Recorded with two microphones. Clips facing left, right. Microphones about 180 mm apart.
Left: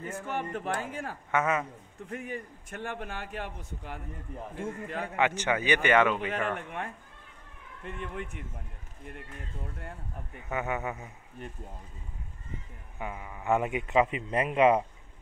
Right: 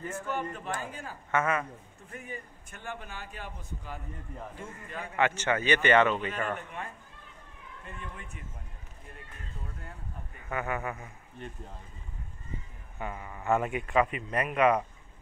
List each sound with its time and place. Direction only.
0.3 s a man's voice: 70° left (ahead or behind)
1.3 s a man's voice: 20° left (ahead or behind)
2.0 s a man's voice: 80° left
5.1 s a man's voice: 15° left (ahead or behind)
7.8 s a man's voice: 70° left (ahead or behind)
10.5 s a man's voice: 20° left (ahead or behind)
11.0 s a man's voice: 10° left (ahead or behind)
13.0 s a man's voice: 10° left (ahead or behind); by 14.9 s 25° left (ahead or behind)